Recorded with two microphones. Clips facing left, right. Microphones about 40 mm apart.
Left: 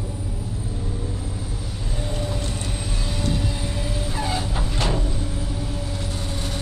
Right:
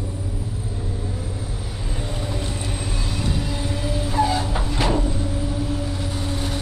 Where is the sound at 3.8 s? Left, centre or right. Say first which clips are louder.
Right 9 dB; centre.